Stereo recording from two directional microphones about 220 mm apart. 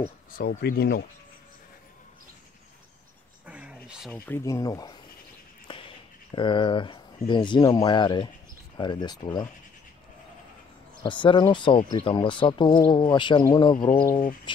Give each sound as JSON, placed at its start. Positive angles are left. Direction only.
{"t": 0.4, "sound": "speech", "side_deg": 45}
{"t": 3.4, "sound": "a sound", "side_deg": -5}
{"t": 4.1, "sound": "speech", "side_deg": 10}
{"t": 5.7, "sound": "a sound", "side_deg": 25}
{"t": 6.3, "sound": "speech", "side_deg": 20}
{"t": 11.0, "sound": "speech", "side_deg": 20}